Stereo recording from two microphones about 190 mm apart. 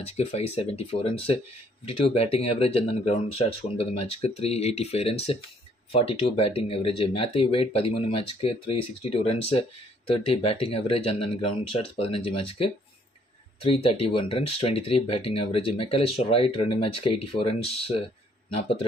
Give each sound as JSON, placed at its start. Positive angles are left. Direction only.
{"t": 0.0, "sound": "speech", "side_deg": 35}